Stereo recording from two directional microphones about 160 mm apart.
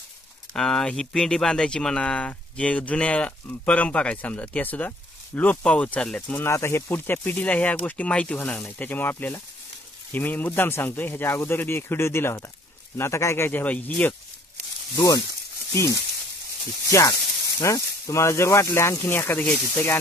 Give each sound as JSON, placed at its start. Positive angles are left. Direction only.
{"t": 0.5, "sound": "speech", "side_deg": 5}
{"t": 15.0, "sound": "speech", "side_deg": 20}
{"t": 17.6, "sound": "speech", "side_deg": 20}